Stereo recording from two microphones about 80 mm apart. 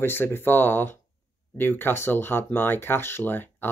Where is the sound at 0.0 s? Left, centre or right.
Left.